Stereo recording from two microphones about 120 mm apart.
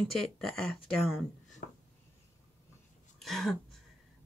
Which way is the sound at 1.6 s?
90° left.